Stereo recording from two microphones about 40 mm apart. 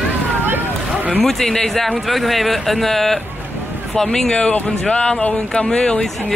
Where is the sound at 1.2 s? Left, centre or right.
Centre.